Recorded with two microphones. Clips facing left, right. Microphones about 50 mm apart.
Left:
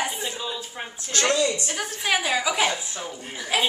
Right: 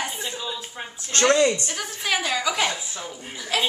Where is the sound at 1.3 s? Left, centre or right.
Right.